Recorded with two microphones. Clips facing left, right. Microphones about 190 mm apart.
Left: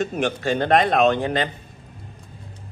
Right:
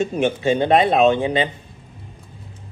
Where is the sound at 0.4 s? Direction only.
15° right (ahead or behind).